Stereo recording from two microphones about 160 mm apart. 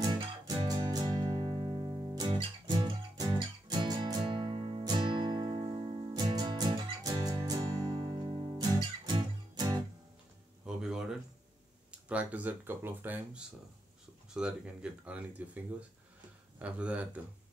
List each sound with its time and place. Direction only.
0.0 s music: 25° right (ahead or behind)
10.6 s a sound: 5° right (ahead or behind)
11.9 s speech: 10° right (ahead or behind)